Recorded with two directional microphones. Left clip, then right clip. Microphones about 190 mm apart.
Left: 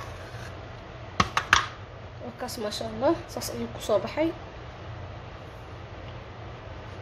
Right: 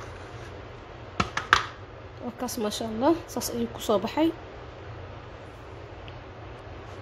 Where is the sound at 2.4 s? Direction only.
35° right (ahead or behind).